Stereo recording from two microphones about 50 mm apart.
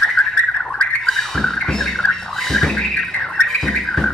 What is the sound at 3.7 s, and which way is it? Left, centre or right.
Music, centre.